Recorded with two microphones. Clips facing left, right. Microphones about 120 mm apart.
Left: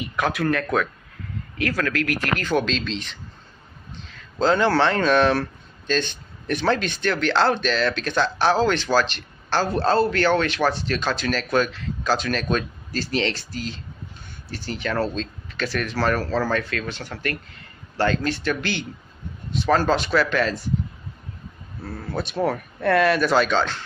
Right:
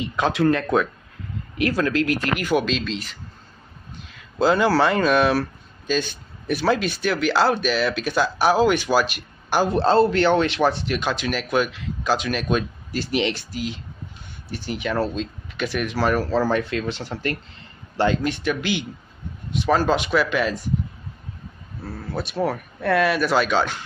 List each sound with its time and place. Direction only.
0.0 s speech: 25° right (ahead or behind)
2.3 s speech: 10° right (ahead or behind)
21.8 s speech: 5° right (ahead or behind)